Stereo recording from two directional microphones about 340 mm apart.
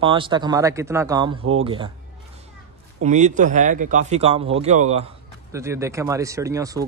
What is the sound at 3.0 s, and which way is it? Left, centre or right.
Speech, right.